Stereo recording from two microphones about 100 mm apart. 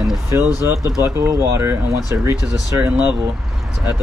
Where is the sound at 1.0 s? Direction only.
25° right (ahead or behind).